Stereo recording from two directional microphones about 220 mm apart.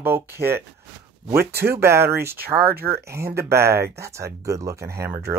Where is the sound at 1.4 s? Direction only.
45° right (ahead or behind).